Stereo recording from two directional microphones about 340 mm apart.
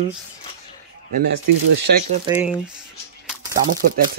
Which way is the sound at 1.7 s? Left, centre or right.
Right.